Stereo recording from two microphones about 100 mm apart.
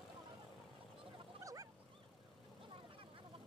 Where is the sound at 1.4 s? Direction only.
35° right (ahead or behind).